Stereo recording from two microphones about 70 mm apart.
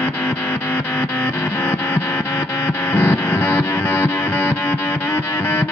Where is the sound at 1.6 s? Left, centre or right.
Left.